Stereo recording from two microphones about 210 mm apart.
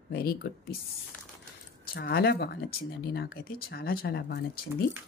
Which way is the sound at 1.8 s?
50° left (ahead or behind).